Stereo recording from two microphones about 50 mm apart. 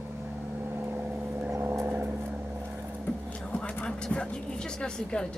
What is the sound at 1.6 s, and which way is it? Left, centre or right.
Vehicle, right.